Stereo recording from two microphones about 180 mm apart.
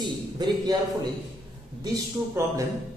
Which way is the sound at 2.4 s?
15° right (ahead or behind).